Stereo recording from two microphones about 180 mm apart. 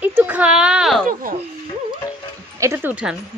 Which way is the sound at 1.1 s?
50° right (ahead or behind).